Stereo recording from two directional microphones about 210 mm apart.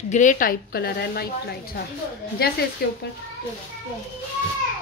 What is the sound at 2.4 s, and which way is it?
Speech, 45° left (ahead or behind).